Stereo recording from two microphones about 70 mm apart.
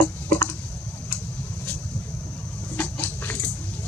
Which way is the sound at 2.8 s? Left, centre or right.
Left.